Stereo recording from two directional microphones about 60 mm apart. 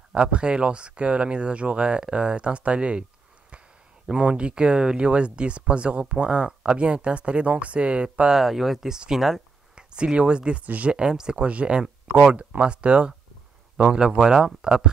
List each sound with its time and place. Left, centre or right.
0.1 s speech: centre
4.1 s speech: centre
8.4 s speech: centre
9.8 s speech: centre